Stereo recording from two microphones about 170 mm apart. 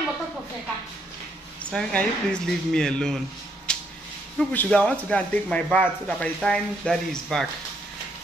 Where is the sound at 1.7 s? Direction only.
5° left (ahead or behind).